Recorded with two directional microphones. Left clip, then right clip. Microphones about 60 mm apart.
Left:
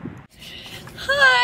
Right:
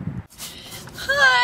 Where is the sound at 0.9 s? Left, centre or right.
Centre.